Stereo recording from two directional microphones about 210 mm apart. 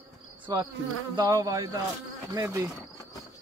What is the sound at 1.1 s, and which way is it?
Speech, 20° right (ahead or behind).